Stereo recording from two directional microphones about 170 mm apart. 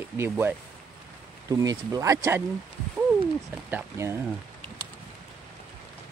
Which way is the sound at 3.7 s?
15° right (ahead or behind).